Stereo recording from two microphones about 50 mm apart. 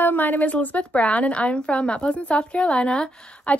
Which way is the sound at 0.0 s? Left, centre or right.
Left.